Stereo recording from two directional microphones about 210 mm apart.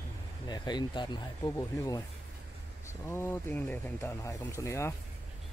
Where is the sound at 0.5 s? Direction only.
20° left (ahead or behind).